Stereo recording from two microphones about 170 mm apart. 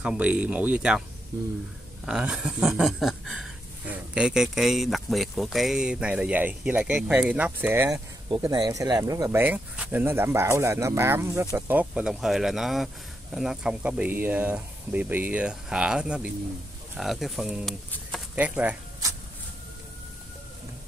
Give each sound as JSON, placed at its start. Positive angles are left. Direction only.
{"t": 0.0, "sound": "speech", "side_deg": -5}
{"t": 2.0, "sound": "speech", "side_deg": -5}